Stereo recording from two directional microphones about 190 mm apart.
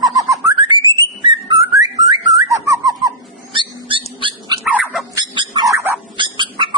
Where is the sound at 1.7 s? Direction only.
20° right (ahead or behind).